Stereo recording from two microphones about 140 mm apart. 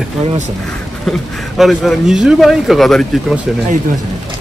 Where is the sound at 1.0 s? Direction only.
Centre (ahead or behind).